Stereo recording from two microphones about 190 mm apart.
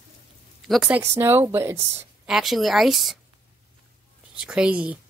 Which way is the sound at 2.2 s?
Centre (ahead or behind).